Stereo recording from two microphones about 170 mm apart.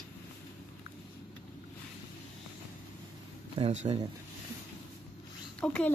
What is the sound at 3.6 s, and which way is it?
Speech, 40° right (ahead or behind).